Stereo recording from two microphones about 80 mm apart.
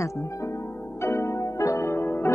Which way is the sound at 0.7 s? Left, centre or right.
Left.